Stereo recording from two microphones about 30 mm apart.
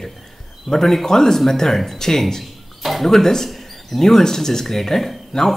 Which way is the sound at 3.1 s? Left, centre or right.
Centre.